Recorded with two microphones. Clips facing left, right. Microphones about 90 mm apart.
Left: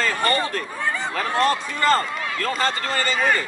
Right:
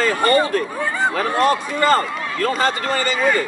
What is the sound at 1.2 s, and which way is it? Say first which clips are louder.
A man's voice: right 1 dB; 15° right (ahead or behind).